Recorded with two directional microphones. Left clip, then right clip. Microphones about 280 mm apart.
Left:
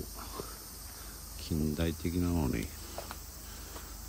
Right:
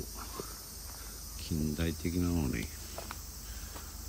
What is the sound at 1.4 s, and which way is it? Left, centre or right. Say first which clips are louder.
Cricket: left 2 dB; centre.